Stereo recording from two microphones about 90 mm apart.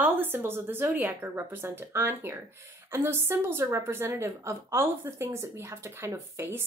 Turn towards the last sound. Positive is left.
turn(degrees=-30)  # may be behind; listen again after turning